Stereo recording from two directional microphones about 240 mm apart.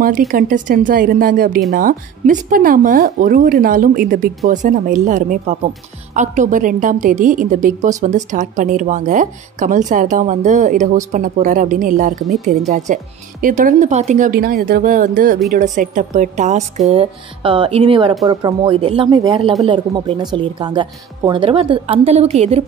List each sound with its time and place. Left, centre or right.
0.3 s a woman's voice: right